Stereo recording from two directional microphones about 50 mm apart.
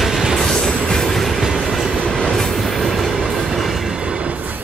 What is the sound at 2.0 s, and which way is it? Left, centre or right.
Train, centre.